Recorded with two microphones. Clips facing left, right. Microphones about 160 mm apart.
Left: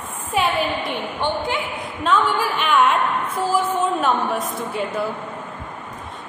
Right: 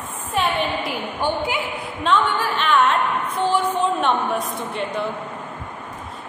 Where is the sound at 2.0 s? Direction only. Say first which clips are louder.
Left 1 dB; 5° left (ahead or behind).